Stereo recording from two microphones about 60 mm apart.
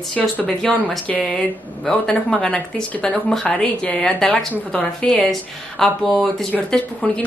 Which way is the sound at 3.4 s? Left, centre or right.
Left.